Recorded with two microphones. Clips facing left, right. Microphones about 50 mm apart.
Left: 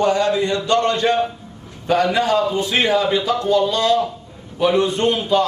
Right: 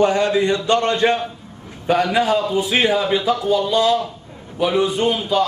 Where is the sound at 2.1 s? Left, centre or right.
Centre.